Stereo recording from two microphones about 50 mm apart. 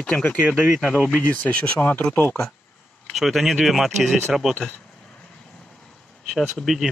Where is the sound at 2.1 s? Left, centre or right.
Left.